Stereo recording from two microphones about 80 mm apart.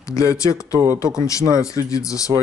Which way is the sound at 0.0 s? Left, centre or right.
Left.